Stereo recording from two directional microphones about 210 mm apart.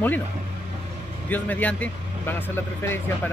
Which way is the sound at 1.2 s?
10° left (ahead or behind).